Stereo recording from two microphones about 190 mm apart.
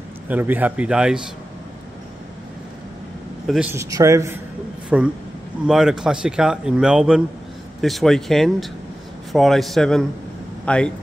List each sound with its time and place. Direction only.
0.3 s speech: 10° right (ahead or behind)
3.4 s a man's voice: 5° right (ahead or behind)
3.7 s a man's voice: 15° right (ahead or behind); by 10.9 s 5° left (ahead or behind)